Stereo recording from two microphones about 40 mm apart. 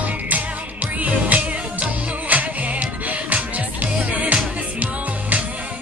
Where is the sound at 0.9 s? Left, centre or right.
Right.